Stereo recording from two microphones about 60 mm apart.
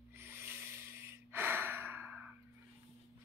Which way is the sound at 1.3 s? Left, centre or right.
Right.